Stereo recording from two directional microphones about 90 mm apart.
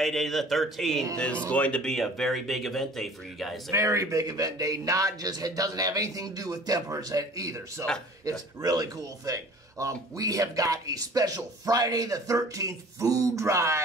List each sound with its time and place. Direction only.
0.0 s speech: centre (ahead or behind)
1.1 s speech: 15° left (ahead or behind)
3.7 s speech: 35° right (ahead or behind)